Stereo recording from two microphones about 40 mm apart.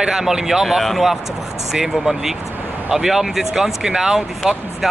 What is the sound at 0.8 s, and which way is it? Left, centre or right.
Speech, centre.